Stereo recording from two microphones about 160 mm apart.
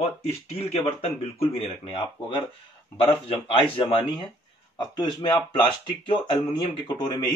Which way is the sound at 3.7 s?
35° left (ahead or behind).